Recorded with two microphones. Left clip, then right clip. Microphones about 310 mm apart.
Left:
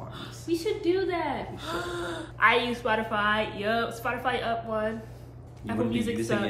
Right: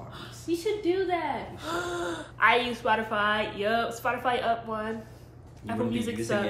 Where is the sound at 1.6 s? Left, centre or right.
Centre.